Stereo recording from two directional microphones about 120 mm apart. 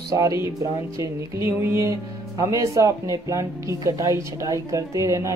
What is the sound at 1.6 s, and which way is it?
Speech, 25° right (ahead or behind).